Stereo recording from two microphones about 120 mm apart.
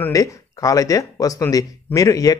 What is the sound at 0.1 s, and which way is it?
Speech, 25° left (ahead or behind).